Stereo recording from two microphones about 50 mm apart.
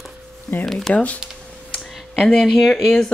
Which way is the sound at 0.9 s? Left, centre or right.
Left.